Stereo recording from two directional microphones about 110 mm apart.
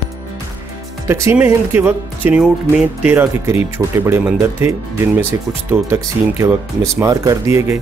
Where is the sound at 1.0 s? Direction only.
20° right (ahead or behind).